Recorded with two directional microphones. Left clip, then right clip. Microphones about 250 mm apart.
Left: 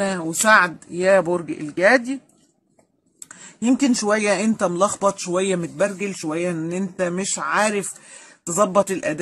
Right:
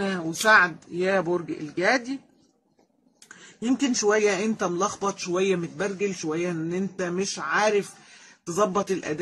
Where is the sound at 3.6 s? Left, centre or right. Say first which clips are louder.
Left 4 dB; left.